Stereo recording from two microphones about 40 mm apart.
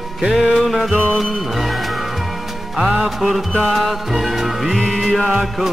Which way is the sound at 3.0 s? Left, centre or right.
Centre.